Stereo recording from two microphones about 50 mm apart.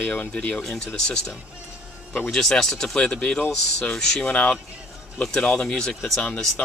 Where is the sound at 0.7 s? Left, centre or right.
Centre.